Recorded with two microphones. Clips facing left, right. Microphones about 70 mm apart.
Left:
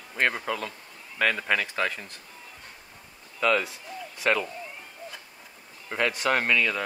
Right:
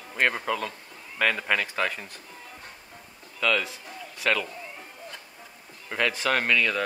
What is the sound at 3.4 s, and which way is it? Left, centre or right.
A man's voice, centre.